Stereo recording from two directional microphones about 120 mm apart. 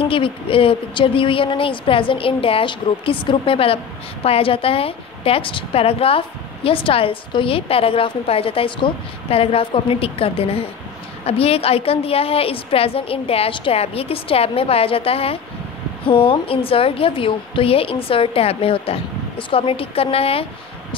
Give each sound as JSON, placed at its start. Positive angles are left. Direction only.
{"t": 0.0, "sound": "a woman's voice", "side_deg": 50}